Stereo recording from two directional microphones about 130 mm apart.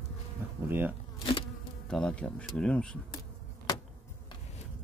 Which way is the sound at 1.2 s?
40° left (ahead or behind).